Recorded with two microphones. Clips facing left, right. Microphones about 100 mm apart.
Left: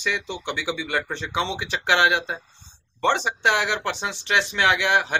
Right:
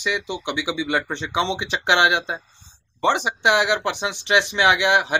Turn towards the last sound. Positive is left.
turn(degrees=-15)  # may be behind; listen again after turning